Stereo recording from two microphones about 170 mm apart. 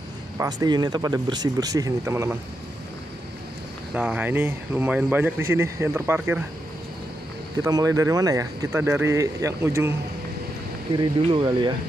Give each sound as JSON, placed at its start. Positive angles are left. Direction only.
{"t": 0.4, "sound": "speech", "side_deg": -20}
{"t": 3.9, "sound": "a man's voice", "side_deg": -5}
{"t": 7.6, "sound": "speech", "side_deg": -20}
{"t": 11.0, "sound": "speech", "side_deg": -30}